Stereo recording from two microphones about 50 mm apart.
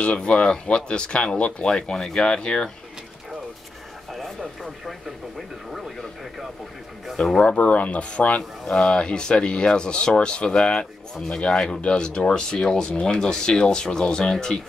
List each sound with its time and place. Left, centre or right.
0.0 s speech: left
4.1 s speech: centre
7.4 s speech: left; by 14.6 s centre